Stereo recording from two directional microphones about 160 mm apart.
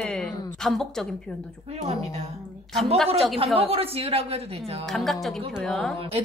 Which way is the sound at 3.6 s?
40° right (ahead or behind).